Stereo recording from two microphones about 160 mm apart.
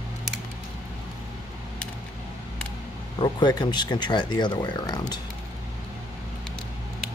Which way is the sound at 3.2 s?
25° left (ahead or behind).